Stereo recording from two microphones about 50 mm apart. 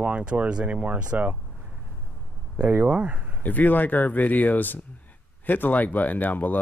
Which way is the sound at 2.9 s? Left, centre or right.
Right.